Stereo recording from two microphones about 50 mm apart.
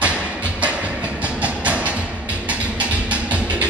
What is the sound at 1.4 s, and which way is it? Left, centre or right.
Music, right.